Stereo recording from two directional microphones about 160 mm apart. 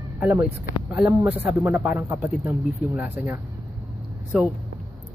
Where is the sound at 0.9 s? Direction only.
10° right (ahead or behind).